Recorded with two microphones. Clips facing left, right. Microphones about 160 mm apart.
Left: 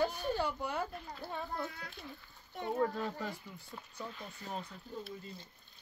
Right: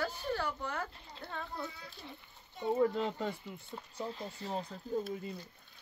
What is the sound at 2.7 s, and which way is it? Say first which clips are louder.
Speech: right 4 dB; 20° right (ahead or behind).